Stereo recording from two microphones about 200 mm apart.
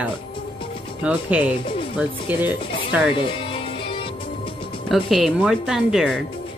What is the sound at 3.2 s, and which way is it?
Music, 25° left (ahead or behind).